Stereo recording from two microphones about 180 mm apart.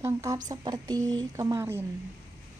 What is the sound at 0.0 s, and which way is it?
Speech, 20° right (ahead or behind).